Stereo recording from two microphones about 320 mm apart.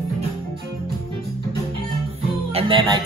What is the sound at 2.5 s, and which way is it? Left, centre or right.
Speech, centre.